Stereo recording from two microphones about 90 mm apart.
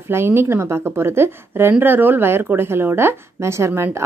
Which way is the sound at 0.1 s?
25° right (ahead or behind).